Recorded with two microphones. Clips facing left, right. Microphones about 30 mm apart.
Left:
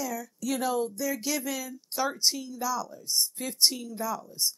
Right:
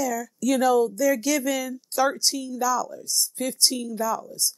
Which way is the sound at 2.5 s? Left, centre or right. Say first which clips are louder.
Right 7 dB; right.